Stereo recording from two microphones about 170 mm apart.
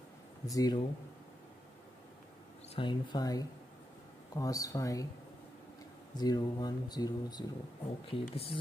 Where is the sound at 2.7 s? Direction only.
30° left (ahead or behind).